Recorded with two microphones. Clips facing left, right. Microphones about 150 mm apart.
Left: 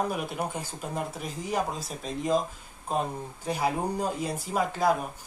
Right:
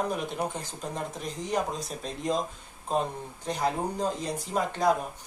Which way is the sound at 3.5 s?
10° left (ahead or behind).